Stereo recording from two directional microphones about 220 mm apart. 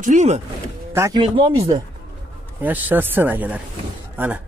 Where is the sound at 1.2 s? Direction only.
25° right (ahead or behind).